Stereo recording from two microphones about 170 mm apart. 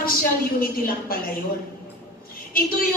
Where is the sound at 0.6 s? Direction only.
60° left (ahead or behind).